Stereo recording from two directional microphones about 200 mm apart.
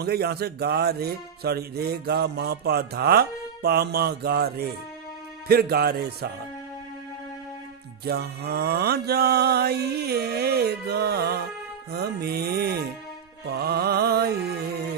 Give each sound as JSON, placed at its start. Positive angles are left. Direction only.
{"t": 0.0, "sound": "speech", "side_deg": -50}
{"t": 8.0, "sound": "speech", "side_deg": -50}